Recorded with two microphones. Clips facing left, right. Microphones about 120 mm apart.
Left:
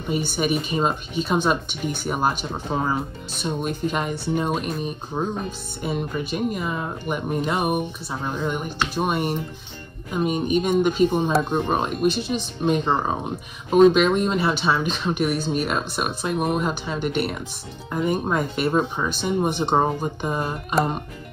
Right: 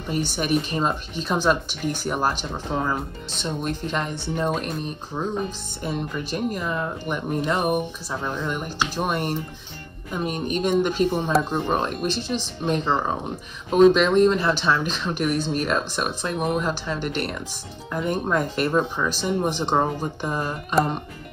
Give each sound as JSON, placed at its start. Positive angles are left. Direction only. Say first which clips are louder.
{"t": 0.1, "sound": "speech", "louder": "even", "side_deg": 5}